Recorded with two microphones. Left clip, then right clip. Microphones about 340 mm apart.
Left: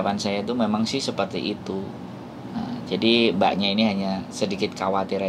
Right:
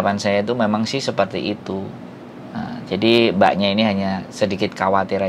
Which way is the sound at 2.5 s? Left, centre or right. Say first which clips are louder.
Right 3 dB; right.